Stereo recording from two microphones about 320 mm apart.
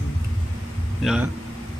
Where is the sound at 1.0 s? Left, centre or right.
Centre.